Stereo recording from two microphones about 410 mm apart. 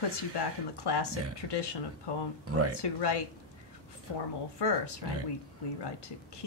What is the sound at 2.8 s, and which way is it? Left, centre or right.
Speech, left.